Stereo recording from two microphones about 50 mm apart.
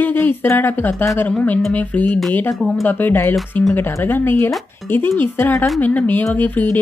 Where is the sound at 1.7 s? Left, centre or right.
Left.